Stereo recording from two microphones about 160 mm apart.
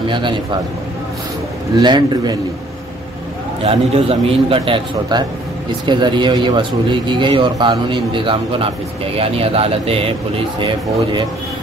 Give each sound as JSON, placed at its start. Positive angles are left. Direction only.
{"t": 0.1, "sound": "speech", "side_deg": -30}
{"t": 1.8, "sound": "speech", "side_deg": -25}
{"t": 3.6, "sound": "a man's voice", "side_deg": -35}